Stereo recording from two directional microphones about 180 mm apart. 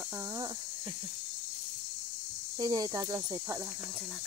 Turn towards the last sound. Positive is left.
turn(degrees=-15)  # may be behind; listen again after turning